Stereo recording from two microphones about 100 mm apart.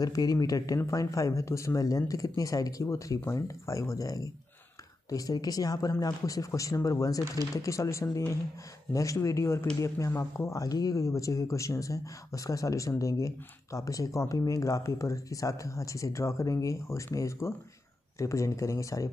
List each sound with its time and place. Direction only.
0.0 s speech: 35° left (ahead or behind)